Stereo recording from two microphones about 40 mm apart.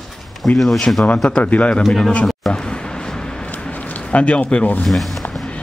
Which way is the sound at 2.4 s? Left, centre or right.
Centre.